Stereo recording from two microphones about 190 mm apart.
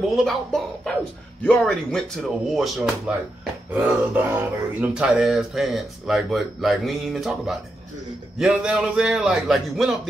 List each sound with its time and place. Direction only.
0.1 s speech: centre (ahead or behind)
3.7 s a sound: 5° right (ahead or behind)
4.7 s speech: 5° right (ahead or behind)